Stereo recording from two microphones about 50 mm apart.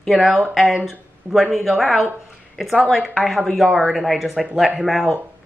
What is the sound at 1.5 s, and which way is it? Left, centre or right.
A woman's voice, centre.